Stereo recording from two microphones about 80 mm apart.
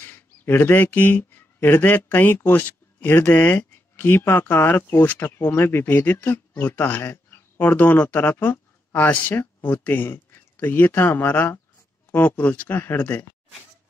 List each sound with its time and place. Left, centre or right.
0.0 s speech: left